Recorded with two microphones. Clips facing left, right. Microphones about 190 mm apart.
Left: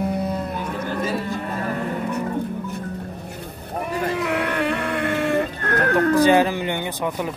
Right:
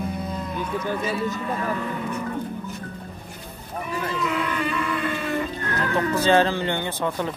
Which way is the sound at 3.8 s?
60° left (ahead or behind).